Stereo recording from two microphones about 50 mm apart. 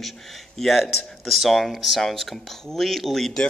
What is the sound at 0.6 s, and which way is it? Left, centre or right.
Speech, centre.